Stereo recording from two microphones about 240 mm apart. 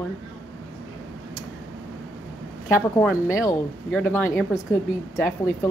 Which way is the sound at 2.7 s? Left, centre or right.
Centre.